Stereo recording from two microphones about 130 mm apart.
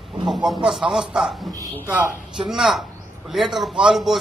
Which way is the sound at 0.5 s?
5° right (ahead or behind).